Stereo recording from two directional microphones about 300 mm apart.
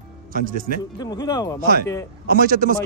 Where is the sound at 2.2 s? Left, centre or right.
Right.